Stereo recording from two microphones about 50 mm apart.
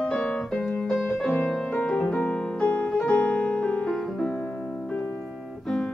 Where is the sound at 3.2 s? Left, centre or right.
Left.